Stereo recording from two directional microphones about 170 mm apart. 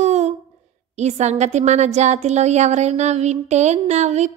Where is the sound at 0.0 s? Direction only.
40° right (ahead or behind).